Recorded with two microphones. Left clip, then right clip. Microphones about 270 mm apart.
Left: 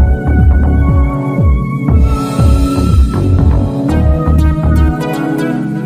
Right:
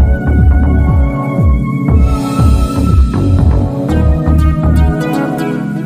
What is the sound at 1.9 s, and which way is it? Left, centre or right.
Music, centre.